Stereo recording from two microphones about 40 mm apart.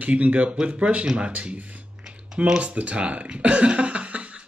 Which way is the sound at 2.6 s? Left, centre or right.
Right.